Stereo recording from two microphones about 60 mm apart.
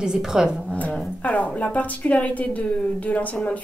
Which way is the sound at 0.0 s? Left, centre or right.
Centre.